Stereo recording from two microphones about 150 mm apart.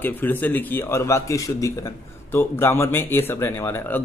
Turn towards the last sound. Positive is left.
turn(degrees=15)  # may be behind; listen again after turning